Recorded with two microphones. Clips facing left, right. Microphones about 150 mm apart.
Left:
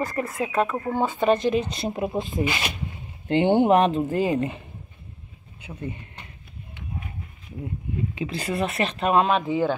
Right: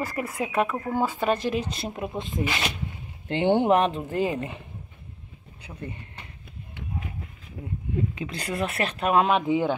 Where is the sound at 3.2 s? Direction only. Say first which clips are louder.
Left 3 dB; 15° left (ahead or behind).